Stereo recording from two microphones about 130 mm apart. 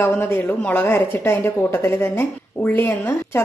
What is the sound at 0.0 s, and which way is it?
Speech, 15° left (ahead or behind).